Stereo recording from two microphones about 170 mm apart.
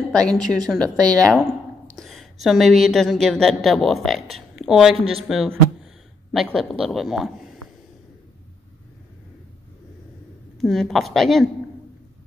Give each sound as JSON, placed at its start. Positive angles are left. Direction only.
{"t": 0.1, "sound": "a woman's voice", "side_deg": 5}
{"t": 2.0, "sound": "a sound", "side_deg": 0}
{"t": 2.4, "sound": "a woman's voice", "side_deg": 0}
{"t": 10.6, "sound": "a woman's voice", "side_deg": 0}